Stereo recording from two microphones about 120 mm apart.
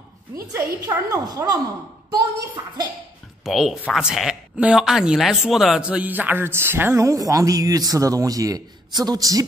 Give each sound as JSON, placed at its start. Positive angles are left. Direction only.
{"t": 0.5, "sound": "a woman's voice", "side_deg": -25}
{"t": 3.4, "sound": "speech", "side_deg": -5}